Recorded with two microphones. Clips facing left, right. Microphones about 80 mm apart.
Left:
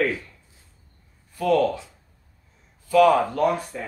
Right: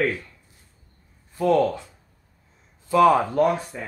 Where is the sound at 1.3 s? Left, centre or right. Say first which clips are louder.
Right 1 dB; right.